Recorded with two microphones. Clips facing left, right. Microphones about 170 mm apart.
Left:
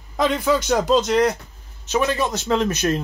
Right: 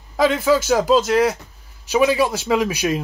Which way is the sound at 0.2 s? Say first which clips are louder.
Right 3 dB; 5° right (ahead or behind).